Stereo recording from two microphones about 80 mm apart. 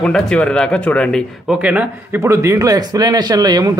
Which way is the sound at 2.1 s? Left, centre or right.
Right.